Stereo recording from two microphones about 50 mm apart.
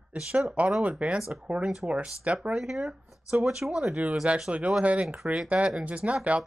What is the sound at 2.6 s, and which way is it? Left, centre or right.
Speech, centre.